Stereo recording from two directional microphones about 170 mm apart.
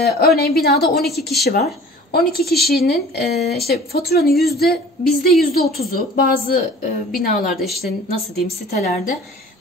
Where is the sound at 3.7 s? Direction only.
65° left (ahead or behind).